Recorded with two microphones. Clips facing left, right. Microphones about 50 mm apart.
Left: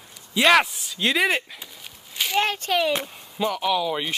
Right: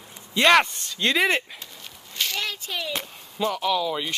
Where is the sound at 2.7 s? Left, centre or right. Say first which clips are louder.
Left 9 dB; left.